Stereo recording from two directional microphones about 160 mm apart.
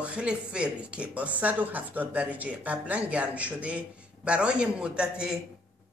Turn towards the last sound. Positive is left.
turn(degrees=-5)  # may be behind; listen again after turning